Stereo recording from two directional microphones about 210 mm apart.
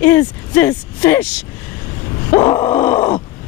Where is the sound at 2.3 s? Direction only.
25° left (ahead or behind).